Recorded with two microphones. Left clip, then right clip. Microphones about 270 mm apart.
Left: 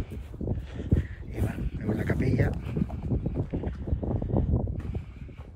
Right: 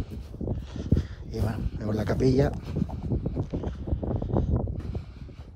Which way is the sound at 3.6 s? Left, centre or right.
Left.